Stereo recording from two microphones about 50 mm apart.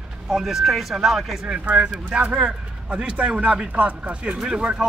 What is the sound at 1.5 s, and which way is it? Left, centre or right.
A man's voice, right.